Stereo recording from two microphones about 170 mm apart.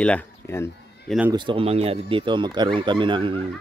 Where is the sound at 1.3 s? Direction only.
30° right (ahead or behind).